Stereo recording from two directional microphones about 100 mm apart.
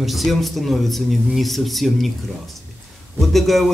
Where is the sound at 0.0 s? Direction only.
Centre (ahead or behind).